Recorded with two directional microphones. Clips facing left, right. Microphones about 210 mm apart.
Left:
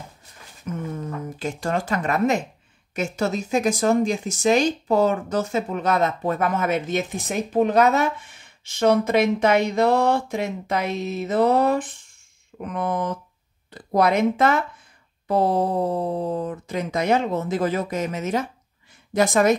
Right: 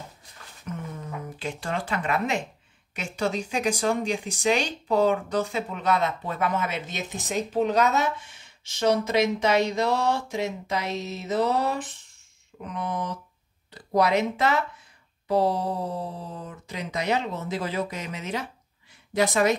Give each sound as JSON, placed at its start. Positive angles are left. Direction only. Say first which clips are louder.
{"t": 1.4, "sound": "speech", "louder": "left 5 dB", "side_deg": 45}